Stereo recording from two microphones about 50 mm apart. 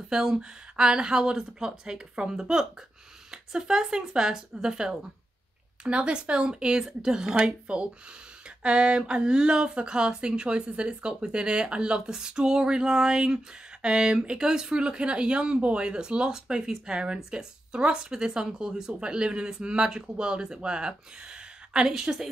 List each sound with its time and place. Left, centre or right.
0.1 s speech: centre